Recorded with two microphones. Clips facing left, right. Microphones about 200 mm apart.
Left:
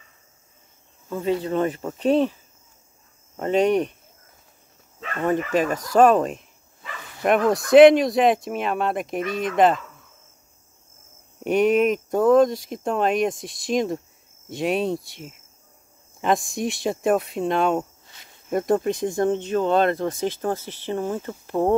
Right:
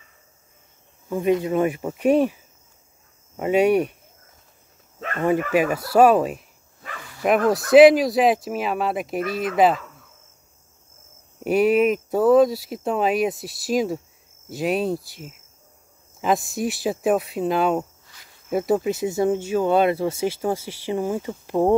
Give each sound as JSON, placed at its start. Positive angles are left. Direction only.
{"t": 1.0, "sound": "speech", "side_deg": -15}
{"t": 3.3, "sound": "speech", "side_deg": -10}
{"t": 5.2, "sound": "speech", "side_deg": -10}
{"t": 11.4, "sound": "speech", "side_deg": -5}
{"t": 18.0, "sound": "cricket", "side_deg": 25}
{"t": 18.5, "sound": "speech", "side_deg": -5}